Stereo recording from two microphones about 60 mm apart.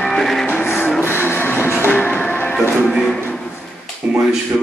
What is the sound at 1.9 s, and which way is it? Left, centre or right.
Music, left.